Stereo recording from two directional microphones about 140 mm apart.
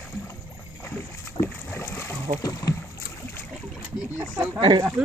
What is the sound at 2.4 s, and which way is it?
Speech, 25° left (ahead or behind).